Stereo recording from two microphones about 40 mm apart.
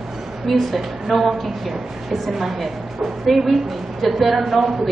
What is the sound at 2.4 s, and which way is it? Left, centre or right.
A woman's voice, centre.